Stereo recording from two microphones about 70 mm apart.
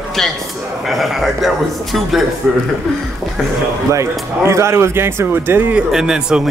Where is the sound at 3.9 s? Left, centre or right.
Right.